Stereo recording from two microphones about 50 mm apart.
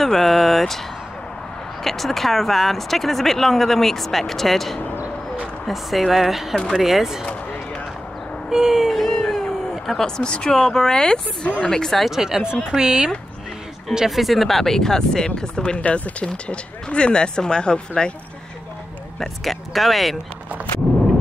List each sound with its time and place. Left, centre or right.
0.0 s speech: centre
1.8 s speech: centre
4.9 s a sound: right
5.7 s speech: centre
8.5 s speech: centre
8.9 s cat: centre
9.8 s speech: centre
12.0 s speech: centre
19.1 s speech: centre